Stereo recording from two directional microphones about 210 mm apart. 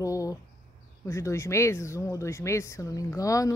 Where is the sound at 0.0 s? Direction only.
15° left (ahead or behind).